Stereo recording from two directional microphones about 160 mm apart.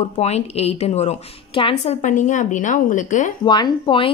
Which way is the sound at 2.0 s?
50° left (ahead or behind).